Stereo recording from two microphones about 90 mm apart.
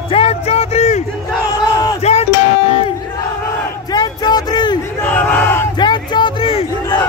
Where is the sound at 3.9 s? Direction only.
50° left (ahead or behind).